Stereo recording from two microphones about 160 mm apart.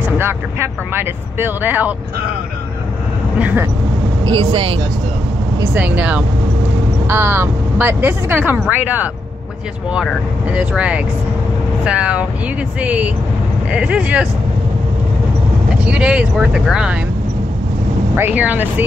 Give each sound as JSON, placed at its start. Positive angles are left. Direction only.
{"t": 0.2, "sound": "speech", "side_deg": -15}
{"t": 3.3, "sound": "speech", "side_deg": -10}
{"t": 4.2, "sound": "speech", "side_deg": -30}
{"t": 5.6, "sound": "speech", "side_deg": -10}
{"t": 15.8, "sound": "speech", "side_deg": -5}
{"t": 18.1, "sound": "speech", "side_deg": -10}